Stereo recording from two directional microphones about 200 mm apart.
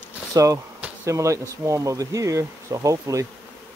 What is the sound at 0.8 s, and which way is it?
Speech, 15° right (ahead or behind).